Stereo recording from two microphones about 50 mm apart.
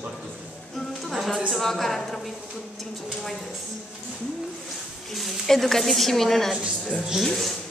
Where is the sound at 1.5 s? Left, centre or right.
Centre.